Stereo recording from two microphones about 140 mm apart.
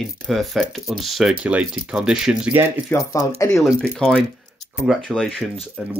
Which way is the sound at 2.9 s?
20° left (ahead or behind).